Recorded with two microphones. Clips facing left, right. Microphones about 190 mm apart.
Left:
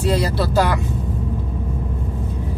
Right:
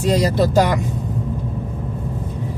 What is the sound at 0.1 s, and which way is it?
Speech, 15° right (ahead or behind).